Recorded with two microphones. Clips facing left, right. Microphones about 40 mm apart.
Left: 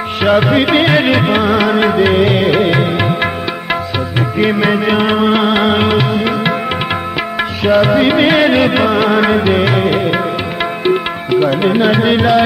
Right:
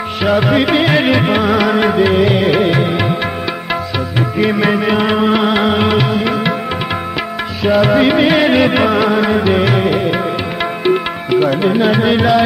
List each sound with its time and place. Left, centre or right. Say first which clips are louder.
0.2 s music: left 2 dB; left
4.4 s music: left 1 dB; centre
7.7 s music: left 1 dB; centre
9.0 s music: left 1 dB; left
9.5 s music: left 1 dB; centre